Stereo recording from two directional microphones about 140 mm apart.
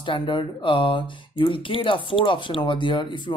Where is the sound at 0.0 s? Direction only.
35° left (ahead or behind).